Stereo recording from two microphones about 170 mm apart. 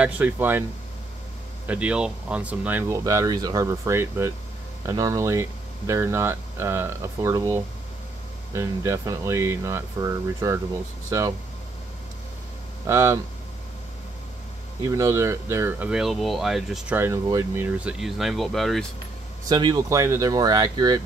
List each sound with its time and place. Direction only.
0.0 s speech: 10° right (ahead or behind)
1.7 s speech: 5° right (ahead or behind)
12.8 s speech: 15° right (ahead or behind)
14.9 s speech: 15° right (ahead or behind)
15.9 s speech: centre (ahead or behind)
17.0 s speech: 15° right (ahead or behind); by 18.9 s centre (ahead or behind)
19.5 s speech: 25° right (ahead or behind)